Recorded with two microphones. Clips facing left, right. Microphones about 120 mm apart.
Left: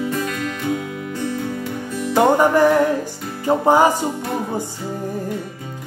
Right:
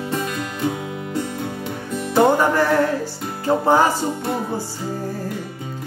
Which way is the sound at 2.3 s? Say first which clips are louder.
Left 3 dB; 15° left (ahead or behind).